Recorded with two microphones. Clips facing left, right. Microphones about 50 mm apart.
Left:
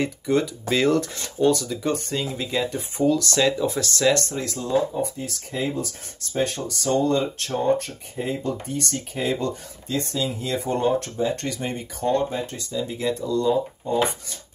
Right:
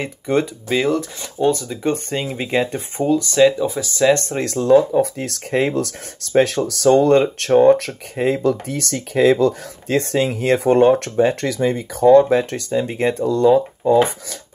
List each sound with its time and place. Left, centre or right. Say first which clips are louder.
0.3 s speech: right 4 dB; right
0.7 s speech: right 2 dB; centre
1.4 s speech: right 2 dB; right
3.0 s speech: right 3 dB; right
3.3 s speech: right 7 dB; centre
4.1 s speech: right 6 dB; right
4.4 s speech: right 9 dB; right
9.8 s speech: right 8 dB; right
12.3 s speech: right 11 dB; right